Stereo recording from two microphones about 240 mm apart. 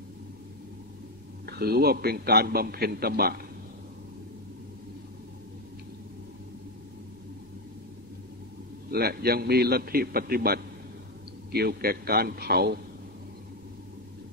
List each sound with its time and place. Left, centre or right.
1.4 s a man's voice: right
8.9 s a man's voice: right